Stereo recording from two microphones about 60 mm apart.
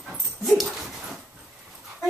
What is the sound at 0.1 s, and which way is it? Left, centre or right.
Dog, centre.